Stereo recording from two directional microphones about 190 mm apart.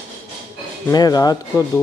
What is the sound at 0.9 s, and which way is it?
Speech, 20° left (ahead or behind).